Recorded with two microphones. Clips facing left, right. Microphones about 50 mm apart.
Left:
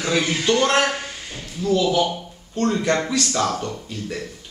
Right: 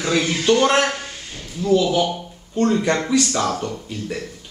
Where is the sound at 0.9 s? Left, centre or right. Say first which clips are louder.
Left 1 dB; centre.